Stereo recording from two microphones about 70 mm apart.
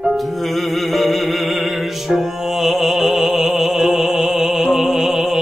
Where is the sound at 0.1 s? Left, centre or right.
Centre.